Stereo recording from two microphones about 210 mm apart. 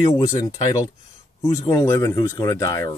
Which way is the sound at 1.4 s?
15° left (ahead or behind).